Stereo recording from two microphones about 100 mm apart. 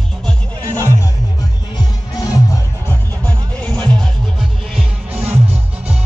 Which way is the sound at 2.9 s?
15° left (ahead or behind).